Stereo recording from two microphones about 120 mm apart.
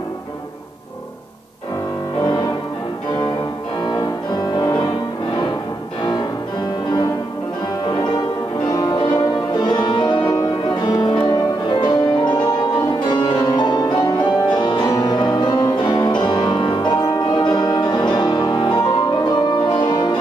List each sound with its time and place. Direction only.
2.2 s music: 35° left (ahead or behind)
3.8 s music: 35° left (ahead or behind)
7.9 s music: 35° left (ahead or behind)